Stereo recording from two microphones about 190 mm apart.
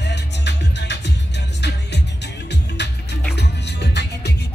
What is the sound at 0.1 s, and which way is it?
Music, 65° left (ahead or behind).